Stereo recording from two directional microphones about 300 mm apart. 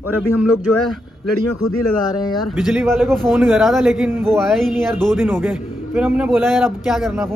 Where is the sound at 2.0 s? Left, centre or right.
Centre.